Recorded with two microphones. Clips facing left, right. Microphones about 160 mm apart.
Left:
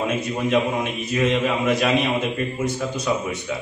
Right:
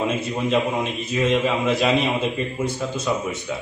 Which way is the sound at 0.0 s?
Centre (ahead or behind).